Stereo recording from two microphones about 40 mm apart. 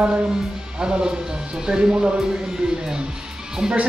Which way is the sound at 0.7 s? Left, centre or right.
Centre.